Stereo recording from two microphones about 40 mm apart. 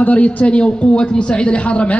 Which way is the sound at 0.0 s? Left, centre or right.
Left.